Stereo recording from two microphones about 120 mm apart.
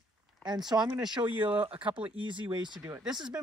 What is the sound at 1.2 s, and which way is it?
Speech, 15° right (ahead or behind).